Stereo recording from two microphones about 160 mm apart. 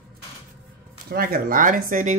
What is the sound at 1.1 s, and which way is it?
Speech, 65° right (ahead or behind).